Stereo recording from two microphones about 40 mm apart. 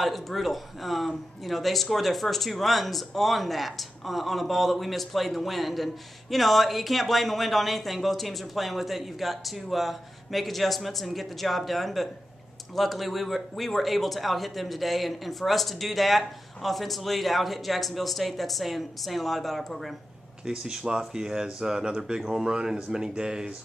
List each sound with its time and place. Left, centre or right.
0.0 s speech: centre
20.4 s speech: centre